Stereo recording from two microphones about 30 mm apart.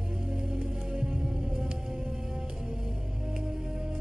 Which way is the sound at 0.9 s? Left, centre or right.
Right.